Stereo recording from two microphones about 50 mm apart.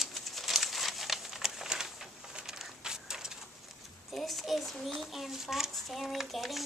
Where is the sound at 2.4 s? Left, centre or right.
Centre.